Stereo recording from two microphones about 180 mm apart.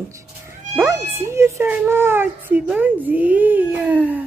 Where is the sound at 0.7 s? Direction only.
15° right (ahead or behind).